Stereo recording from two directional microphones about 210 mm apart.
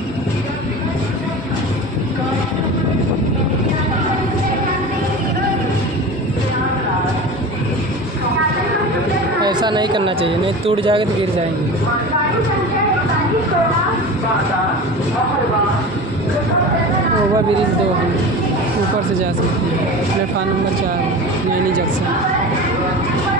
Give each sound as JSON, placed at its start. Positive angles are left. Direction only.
{"t": 9.4, "sound": "speech", "side_deg": -20}